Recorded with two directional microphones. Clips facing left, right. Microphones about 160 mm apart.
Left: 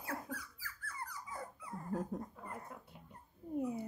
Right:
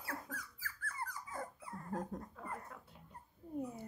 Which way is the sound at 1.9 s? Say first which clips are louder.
Left 3 dB; 5° left (ahead or behind).